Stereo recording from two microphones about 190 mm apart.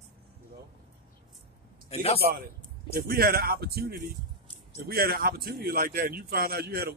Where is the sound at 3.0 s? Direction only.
50° right (ahead or behind).